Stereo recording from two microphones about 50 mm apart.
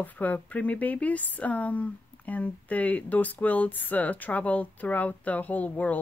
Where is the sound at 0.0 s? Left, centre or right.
Left.